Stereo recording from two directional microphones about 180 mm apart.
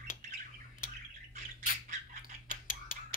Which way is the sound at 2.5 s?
50° left (ahead or behind).